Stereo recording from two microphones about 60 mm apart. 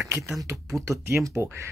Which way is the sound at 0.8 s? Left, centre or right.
Right.